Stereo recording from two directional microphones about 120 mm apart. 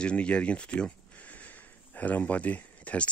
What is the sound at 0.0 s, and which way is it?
Speech, 10° left (ahead or behind).